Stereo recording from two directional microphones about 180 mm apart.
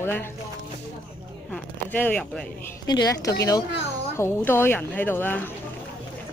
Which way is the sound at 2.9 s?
20° left (ahead or behind).